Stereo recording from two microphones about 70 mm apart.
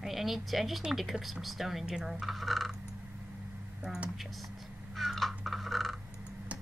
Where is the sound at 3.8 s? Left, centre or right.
Centre.